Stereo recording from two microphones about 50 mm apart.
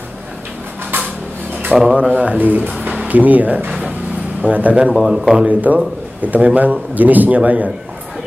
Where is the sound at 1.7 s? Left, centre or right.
Centre.